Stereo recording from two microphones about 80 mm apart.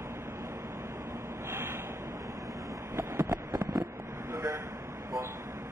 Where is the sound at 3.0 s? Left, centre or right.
Right.